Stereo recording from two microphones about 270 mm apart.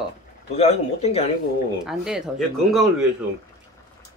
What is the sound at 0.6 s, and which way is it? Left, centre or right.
Speech, left.